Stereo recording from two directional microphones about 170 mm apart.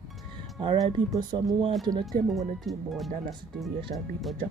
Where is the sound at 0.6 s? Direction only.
30° right (ahead or behind).